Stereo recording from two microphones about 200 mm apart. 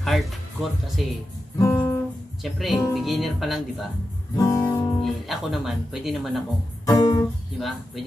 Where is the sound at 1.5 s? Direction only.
15° left (ahead or behind).